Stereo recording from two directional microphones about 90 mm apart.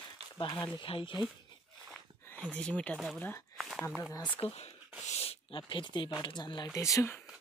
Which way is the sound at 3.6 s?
Centre (ahead or behind).